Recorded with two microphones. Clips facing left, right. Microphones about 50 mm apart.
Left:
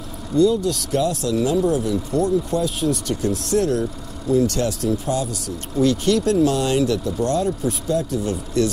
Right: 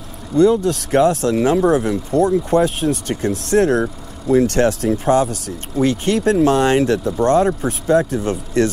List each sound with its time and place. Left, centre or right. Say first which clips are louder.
0.4 s speech: right 4 dB; right